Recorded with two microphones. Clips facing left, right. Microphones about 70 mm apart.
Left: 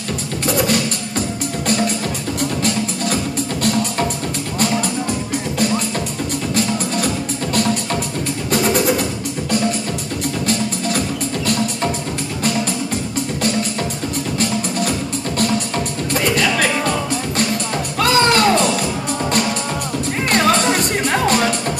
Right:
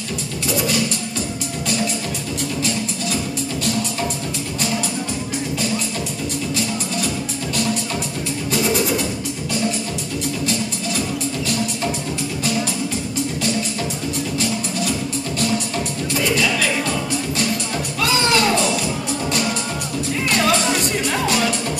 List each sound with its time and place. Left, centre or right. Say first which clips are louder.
0.5 s music: left 3 dB; left
3.6 s music: left 5 dB; left
8.5 s music: left 3 dB; left
10.4 s music: left 3 dB; left
14.4 s music: left 6 dB; left
20.2 s music: left 3 dB; left